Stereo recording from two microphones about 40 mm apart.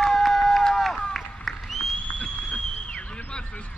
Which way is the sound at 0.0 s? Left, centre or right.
Centre.